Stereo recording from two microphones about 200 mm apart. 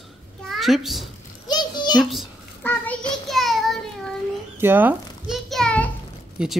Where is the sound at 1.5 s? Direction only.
20° left (ahead or behind).